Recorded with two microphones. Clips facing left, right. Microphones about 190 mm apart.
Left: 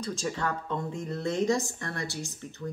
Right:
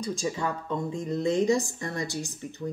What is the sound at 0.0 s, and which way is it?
Speech, 10° right (ahead or behind).